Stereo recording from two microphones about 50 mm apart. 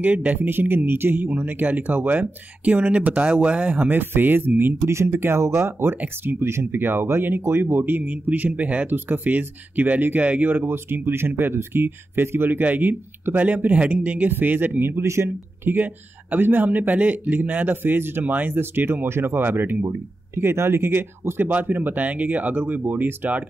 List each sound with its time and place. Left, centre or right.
0.0 s speech: right
0.4 s speech: right
4.8 s speech: right
5.4 s speech: right
8.9 s speech: right
13.6 s speech: right
15.0 s speech: right
15.6 s speech: right
19.0 s speech: right
21.5 s speech: right